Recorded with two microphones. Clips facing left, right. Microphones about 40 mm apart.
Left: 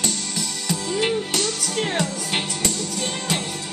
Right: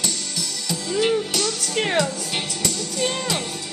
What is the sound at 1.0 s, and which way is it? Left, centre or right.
Music, left.